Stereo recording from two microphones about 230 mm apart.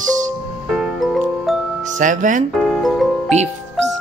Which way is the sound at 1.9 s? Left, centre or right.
Right.